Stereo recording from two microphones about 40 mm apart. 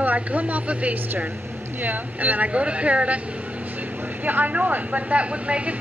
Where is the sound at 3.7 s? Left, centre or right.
Right.